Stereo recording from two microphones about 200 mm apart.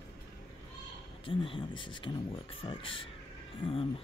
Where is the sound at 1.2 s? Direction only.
25° left (ahead or behind).